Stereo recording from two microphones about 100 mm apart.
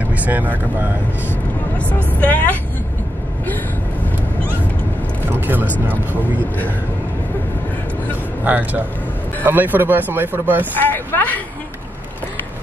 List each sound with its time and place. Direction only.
0.2 s speech: 15° right (ahead or behind)
2.1 s speech: 15° left (ahead or behind)
8.5 s speech: 15° right (ahead or behind)
10.8 s speech: 20° left (ahead or behind)